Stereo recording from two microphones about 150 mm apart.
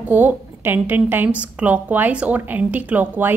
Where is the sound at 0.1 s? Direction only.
10° right (ahead or behind).